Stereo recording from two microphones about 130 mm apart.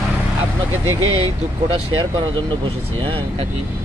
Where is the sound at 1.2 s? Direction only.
40° right (ahead or behind).